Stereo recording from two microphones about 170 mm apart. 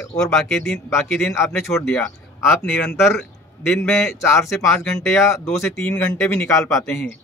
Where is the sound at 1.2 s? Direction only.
15° left (ahead or behind).